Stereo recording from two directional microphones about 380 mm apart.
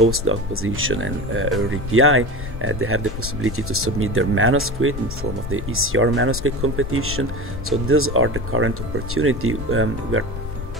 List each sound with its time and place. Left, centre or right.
0.0 s speech: right